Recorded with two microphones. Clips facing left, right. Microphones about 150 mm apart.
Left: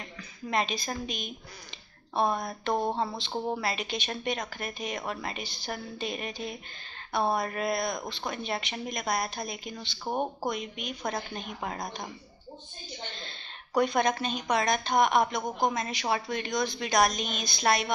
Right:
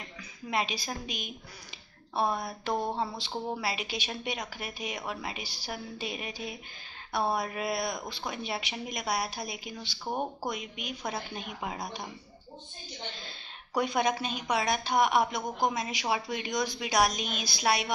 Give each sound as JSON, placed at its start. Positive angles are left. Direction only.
{"t": 0.5, "sound": "a woman's voice", "side_deg": -10}
{"t": 2.7, "sound": "speech", "side_deg": 15}
{"t": 3.6, "sound": "a woman's voice", "side_deg": -5}
{"t": 13.1, "sound": "a woman's voice", "side_deg": -5}